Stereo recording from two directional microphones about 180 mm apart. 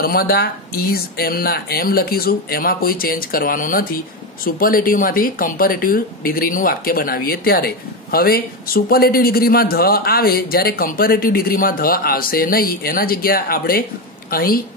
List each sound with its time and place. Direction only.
0.0 s speech: 55° left (ahead or behind)